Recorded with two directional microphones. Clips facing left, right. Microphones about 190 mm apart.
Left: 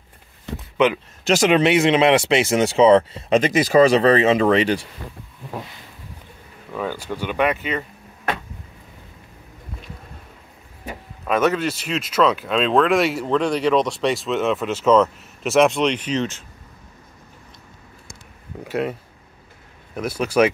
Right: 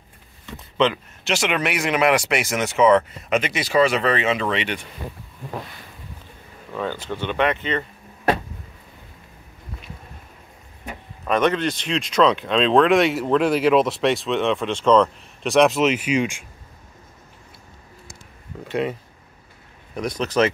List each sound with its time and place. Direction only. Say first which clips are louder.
1.2 s speech: left 7 dB; 40° left (ahead or behind)
1.6 s speech: left 5 dB; 25° left (ahead or behind)
6.7 s speech: left 1 dB; 10° left (ahead or behind)
11.2 s speech: even; 5° left (ahead or behind); by 16.4 s 10° right (ahead or behind)
18.6 s speech: even; 5° left (ahead or behind)
20.0 s speech: left 2 dB; 10° left (ahead or behind)